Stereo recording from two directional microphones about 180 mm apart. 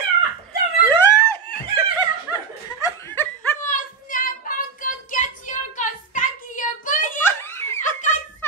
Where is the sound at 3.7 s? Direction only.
50° left (ahead or behind).